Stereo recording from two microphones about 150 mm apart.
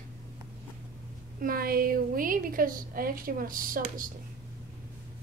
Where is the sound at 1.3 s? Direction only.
75° right (ahead or behind).